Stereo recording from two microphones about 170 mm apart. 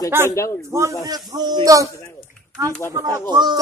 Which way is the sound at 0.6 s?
20° right (ahead or behind).